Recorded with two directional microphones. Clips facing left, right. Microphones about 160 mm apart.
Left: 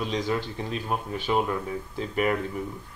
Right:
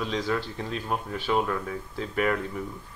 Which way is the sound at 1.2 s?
15° left (ahead or behind).